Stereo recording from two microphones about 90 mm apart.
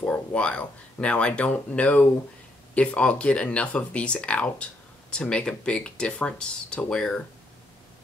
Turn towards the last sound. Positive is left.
turn(degrees=10)  # may be behind; listen again after turning